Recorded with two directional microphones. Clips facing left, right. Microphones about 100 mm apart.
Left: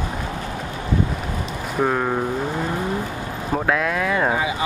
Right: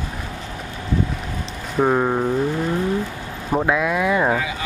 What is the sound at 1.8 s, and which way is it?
Speech, 10° right (ahead or behind).